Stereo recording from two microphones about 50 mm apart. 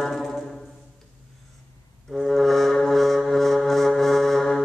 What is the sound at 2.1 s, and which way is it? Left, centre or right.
Music, centre.